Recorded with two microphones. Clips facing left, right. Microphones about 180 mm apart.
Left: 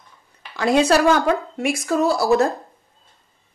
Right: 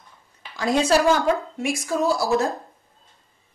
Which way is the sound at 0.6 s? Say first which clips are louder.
Left 3 dB; 65° left (ahead or behind).